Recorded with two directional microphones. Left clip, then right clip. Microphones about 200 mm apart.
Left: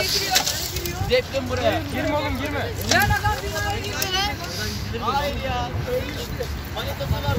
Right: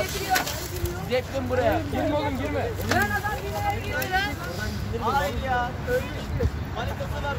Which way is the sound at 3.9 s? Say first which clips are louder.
Left 2 dB; 60° left (ahead or behind).